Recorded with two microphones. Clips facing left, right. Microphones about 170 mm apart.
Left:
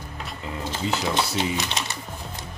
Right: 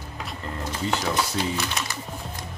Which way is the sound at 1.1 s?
20° left (ahead or behind).